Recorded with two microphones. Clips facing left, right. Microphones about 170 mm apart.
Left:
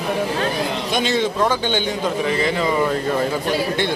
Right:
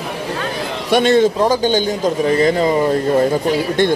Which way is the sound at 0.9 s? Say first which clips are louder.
Right 9 dB; 55° right (ahead or behind).